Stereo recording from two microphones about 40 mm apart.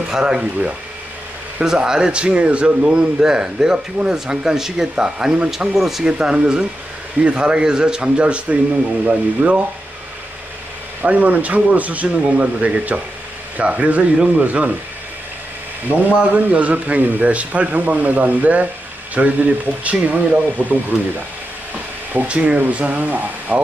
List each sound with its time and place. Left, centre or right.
0.1 s speech: centre
1.6 s speech: centre; by 2.7 s right
2.8 s speech: right
6.1 s speech: right
11.0 s speech: right
14.1 s speech: right
14.4 s speech: right
15.9 s speech: right
22.3 s speech: right